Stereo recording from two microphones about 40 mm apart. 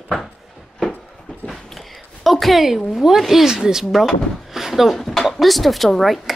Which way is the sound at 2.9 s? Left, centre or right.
Centre.